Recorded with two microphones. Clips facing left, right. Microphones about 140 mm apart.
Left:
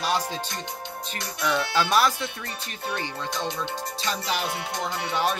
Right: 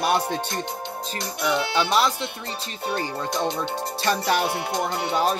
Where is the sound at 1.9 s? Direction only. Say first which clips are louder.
Left 1 dB; 20° right (ahead or behind).